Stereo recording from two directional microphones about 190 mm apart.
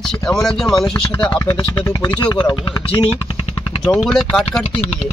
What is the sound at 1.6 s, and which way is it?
Speech, 20° left (ahead or behind).